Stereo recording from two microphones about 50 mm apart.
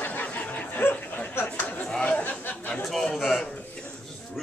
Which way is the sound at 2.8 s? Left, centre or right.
Centre.